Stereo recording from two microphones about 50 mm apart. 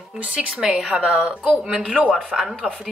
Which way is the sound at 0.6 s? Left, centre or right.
Centre.